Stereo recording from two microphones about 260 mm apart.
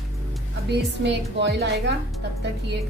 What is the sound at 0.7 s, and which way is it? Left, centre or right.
A woman's voice, right.